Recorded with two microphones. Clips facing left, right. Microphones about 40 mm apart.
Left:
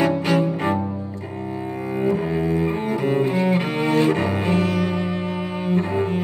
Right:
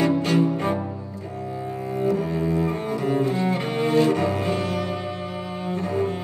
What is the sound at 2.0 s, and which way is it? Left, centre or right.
Cello, left.